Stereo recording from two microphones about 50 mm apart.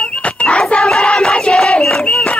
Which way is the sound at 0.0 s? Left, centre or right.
Left.